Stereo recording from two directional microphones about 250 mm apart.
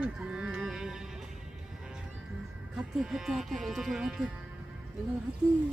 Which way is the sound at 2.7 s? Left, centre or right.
Centre.